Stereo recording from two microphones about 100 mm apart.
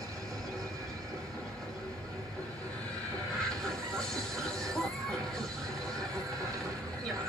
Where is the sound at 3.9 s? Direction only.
5° left (ahead or behind).